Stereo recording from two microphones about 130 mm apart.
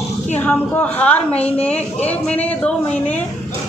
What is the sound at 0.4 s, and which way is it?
A man's voice, 15° left (ahead or behind).